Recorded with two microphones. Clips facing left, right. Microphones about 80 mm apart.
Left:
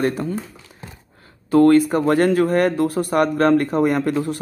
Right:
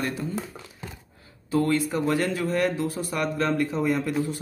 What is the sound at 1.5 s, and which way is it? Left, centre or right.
Speech, left.